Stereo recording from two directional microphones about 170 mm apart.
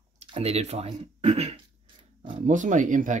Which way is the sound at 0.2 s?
35° right (ahead or behind).